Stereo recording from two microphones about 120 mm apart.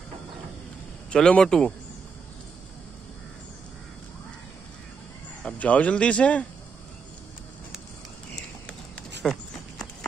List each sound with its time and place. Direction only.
1.1 s speech: 5° left (ahead or behind)
5.4 s speech: 10° left (ahead or behind)
9.2 s horse: 5° left (ahead or behind)